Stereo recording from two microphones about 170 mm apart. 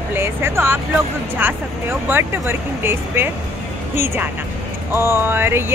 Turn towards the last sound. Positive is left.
turn(degrees=-15)  # may be behind; listen again after turning